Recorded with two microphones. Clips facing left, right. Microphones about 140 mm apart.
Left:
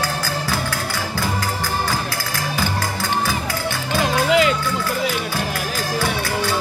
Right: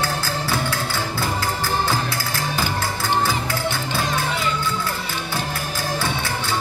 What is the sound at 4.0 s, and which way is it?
Music, 90° left.